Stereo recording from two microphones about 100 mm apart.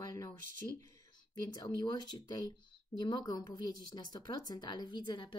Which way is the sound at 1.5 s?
45° left (ahead or behind).